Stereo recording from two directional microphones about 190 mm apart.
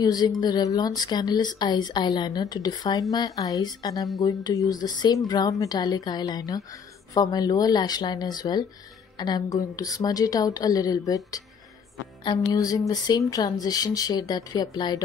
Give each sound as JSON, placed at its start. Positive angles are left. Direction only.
{"t": 0.0, "sound": "a woman's voice", "side_deg": 20}